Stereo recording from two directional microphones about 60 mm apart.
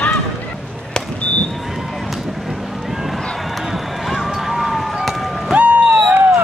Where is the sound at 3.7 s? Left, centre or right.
Centre.